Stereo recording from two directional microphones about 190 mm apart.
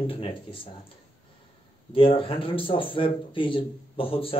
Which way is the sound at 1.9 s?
30° left (ahead or behind).